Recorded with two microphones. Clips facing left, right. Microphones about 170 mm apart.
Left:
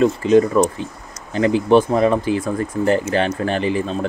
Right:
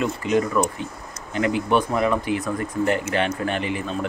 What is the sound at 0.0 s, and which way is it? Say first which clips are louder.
Speech: left 8 dB; 30° left (ahead or behind).